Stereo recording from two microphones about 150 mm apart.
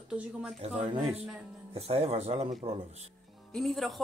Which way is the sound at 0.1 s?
5° right (ahead or behind).